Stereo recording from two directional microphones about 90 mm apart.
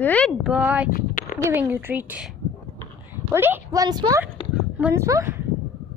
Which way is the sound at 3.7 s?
45° right (ahead or behind).